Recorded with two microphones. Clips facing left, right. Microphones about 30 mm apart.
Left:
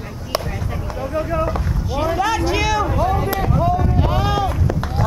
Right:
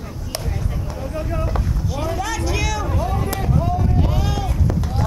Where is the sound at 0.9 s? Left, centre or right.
Centre.